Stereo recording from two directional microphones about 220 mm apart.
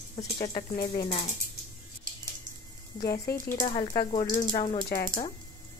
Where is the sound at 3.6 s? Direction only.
20° left (ahead or behind).